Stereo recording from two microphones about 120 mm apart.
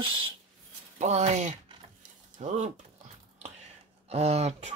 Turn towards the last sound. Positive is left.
turn(degrees=-65)  # may be behind; listen again after turning